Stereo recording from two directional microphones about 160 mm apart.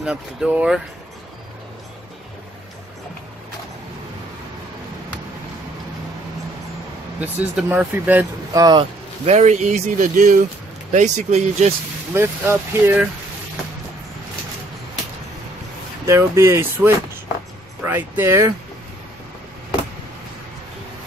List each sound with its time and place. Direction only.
0.0 s speech: 5° right (ahead or behind)
7.2 s speech: 10° right (ahead or behind)
8.5 s speech: 25° right (ahead or behind)
9.2 s speech: 45° right (ahead or behind)
12.1 s speech: 15° right (ahead or behind)
16.1 s speech: 15° right (ahead or behind)